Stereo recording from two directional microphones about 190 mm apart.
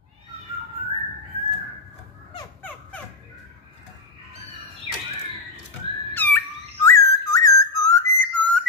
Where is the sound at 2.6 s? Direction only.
10° left (ahead or behind).